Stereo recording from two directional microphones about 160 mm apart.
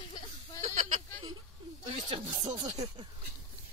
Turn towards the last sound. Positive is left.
turn(degrees=-30)  # may be behind; listen again after turning